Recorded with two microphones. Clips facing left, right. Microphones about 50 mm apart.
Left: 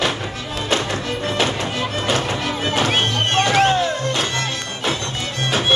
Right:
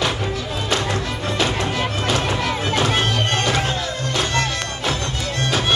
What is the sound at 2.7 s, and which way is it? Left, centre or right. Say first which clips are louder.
Music: left 1 dB; left.